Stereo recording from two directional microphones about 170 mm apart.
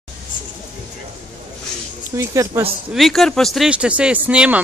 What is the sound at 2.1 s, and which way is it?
Speech, 20° right (ahead or behind).